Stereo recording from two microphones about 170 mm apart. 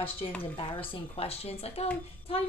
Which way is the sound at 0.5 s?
30° left (ahead or behind).